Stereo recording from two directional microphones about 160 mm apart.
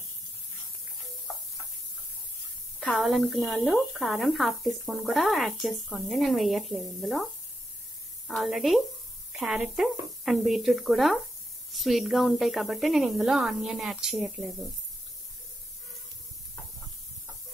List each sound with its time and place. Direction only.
2.8 s speech: centre (ahead or behind)
8.3 s speech: centre (ahead or behind)